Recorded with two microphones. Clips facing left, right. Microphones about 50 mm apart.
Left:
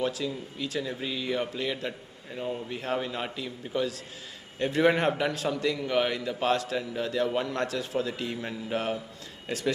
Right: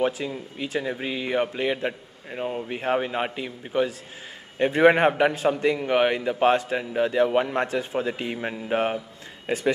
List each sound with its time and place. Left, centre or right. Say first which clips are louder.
0.0 s speech: right 5 dB; right